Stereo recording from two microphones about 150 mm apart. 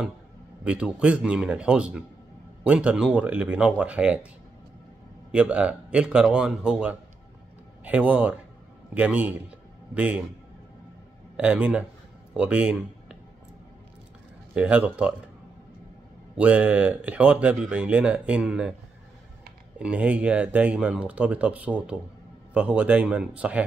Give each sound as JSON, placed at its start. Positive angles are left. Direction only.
{"t": 0.7, "sound": "speech", "side_deg": -5}
{"t": 5.3, "sound": "speech", "side_deg": -10}
{"t": 11.3, "sound": "speech", "side_deg": -10}
{"t": 14.5, "sound": "speech", "side_deg": -10}
{"t": 16.3, "sound": "speech", "side_deg": -10}
{"t": 19.8, "sound": "speech", "side_deg": -10}